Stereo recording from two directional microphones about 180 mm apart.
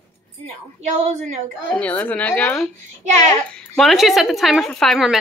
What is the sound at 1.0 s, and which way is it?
Speech, 40° right (ahead or behind).